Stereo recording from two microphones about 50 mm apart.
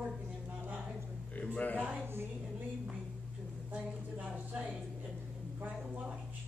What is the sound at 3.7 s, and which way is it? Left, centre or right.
Speech, right.